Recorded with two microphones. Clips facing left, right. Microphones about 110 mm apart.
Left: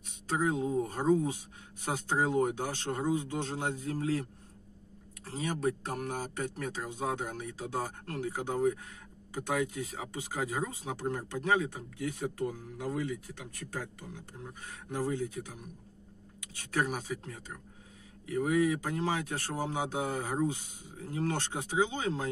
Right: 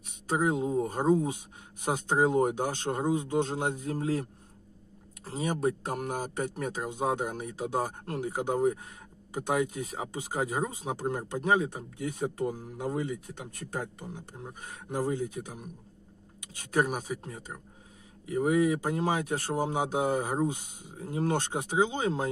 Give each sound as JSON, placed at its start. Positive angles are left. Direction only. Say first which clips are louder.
{"t": 0.3, "sound": "speech", "louder": "right 3 dB", "side_deg": -15}
{"t": 11.6, "sound": "speech", "louder": "right 2 dB", "side_deg": -30}
{"t": 16.9, "sound": "speech", "louder": "right 3 dB", "side_deg": -15}